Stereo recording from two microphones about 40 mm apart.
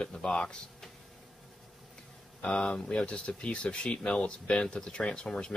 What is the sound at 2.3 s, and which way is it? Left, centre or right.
Speech, left.